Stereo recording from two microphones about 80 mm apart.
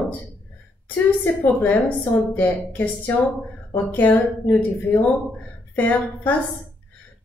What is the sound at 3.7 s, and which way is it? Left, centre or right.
Speech, left.